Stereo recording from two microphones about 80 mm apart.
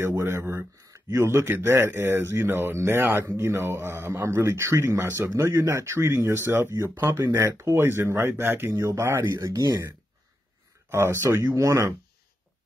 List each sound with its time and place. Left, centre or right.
0.2 s a man's voice: right
9.4 s speech: right
10.9 s a man's voice: right